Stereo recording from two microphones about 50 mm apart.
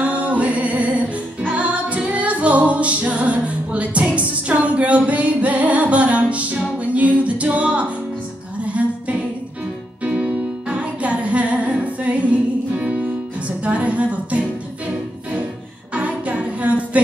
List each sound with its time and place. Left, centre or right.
0.0 s music: right
8.6 s a sound: right
10.0 s music: right
15.9 s music: right